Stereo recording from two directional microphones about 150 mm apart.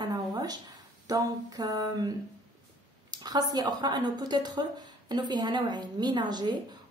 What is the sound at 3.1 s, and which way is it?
A woman's voice, 25° right (ahead or behind).